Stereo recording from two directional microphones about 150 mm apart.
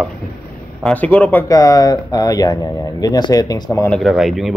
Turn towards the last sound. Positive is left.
turn(degrees=0)  # may be behind; listen again after turning